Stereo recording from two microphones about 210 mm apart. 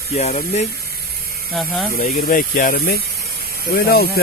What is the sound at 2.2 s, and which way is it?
Speech, 45° left (ahead or behind).